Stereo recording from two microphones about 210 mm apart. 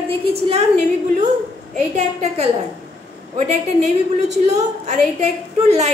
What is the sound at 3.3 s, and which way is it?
A woman's voice, 35° right (ahead or behind).